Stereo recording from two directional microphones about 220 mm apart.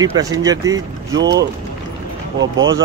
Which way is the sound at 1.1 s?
50° right (ahead or behind).